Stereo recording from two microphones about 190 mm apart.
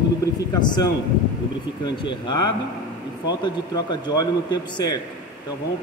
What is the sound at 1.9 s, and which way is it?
Speech, 25° left (ahead or behind).